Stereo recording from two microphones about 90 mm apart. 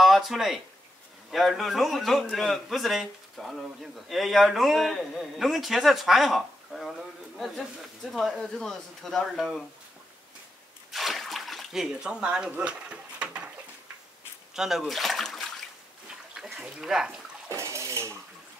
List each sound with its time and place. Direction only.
0.0 s speech: centre (ahead or behind)
10.9 s a sound: centre (ahead or behind)
14.5 s speech: 5° right (ahead or behind)
16.3 s speech: 5° right (ahead or behind)
17.5 s bathtub: 35° right (ahead or behind)